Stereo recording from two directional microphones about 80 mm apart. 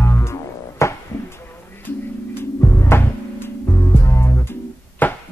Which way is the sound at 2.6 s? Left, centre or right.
Left.